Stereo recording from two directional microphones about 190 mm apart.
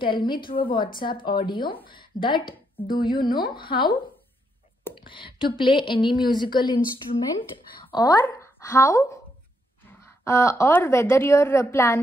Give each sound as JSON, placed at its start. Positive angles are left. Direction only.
{"t": 0.0, "sound": "a woman's voice", "side_deg": 25}
{"t": 7.8, "sound": "a woman's voice", "side_deg": 20}